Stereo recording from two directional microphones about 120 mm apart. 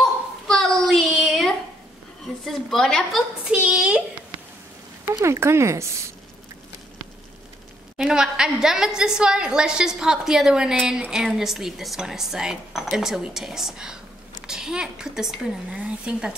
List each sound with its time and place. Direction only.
0.5 s child singing: centre (ahead or behind)
1.2 s a sound: centre (ahead or behind)
2.4 s a woman's voice: centre (ahead or behind)
3.4 s a sound: 10° right (ahead or behind)
5.1 s speech: 25° right (ahead or behind)
8.0 s a woman's voice: 5° right (ahead or behind)